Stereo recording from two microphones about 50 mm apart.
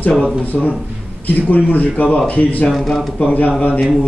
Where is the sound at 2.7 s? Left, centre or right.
Centre.